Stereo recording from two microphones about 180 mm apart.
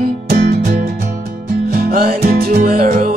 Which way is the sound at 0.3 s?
55° right (ahead or behind).